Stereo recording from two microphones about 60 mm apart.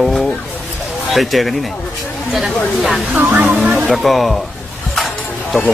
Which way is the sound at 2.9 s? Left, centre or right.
Right.